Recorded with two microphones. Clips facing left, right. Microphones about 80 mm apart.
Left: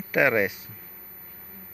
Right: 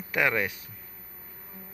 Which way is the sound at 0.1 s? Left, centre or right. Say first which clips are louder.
Left 5 dB; centre.